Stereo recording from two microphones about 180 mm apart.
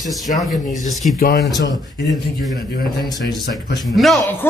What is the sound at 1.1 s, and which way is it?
Speech, 55° left (ahead or behind).